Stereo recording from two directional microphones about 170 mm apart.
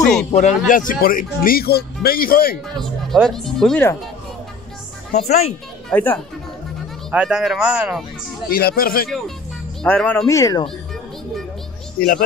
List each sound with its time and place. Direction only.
0.0 s speech: 5° left (ahead or behind)
0.3 s speech: 45° left (ahead or behind); by 2.5 s 60° left (ahead or behind)
2.8 s speech: centre (ahead or behind)
5.9 s speech: 5° left (ahead or behind)
7.1 s speech: 5° right (ahead or behind)
8.5 s speech: 60° left (ahead or behind)
9.8 s speech: 10° left (ahead or behind)
10.2 s speech: 20° left (ahead or behind)